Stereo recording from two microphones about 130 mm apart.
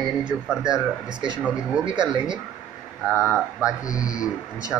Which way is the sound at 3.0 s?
5° right (ahead or behind).